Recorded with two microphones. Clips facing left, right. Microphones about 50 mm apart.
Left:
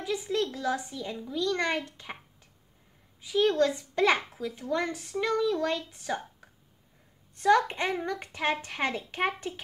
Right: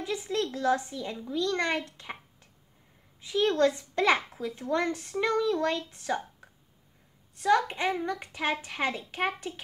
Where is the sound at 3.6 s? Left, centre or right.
Centre.